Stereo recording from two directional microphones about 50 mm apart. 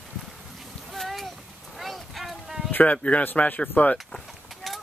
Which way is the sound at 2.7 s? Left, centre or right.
Left.